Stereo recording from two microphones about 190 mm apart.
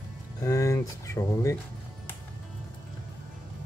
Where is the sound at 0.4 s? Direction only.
15° left (ahead or behind).